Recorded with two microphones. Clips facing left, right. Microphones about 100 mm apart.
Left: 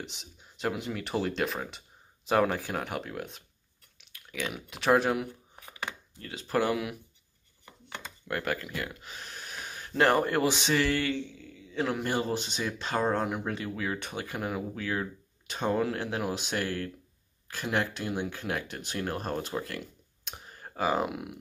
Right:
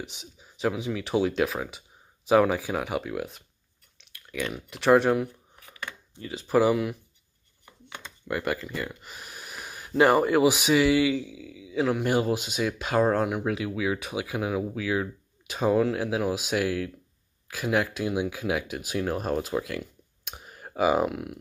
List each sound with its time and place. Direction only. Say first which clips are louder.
0.0 s speech: right 3 dB; centre (ahead or behind)
8.3 s speech: right 3 dB; centre (ahead or behind)